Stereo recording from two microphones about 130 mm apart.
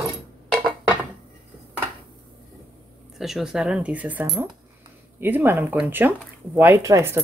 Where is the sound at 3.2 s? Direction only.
Centre (ahead or behind).